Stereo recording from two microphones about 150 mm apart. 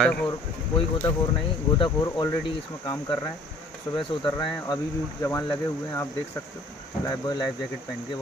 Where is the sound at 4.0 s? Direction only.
30° left (ahead or behind).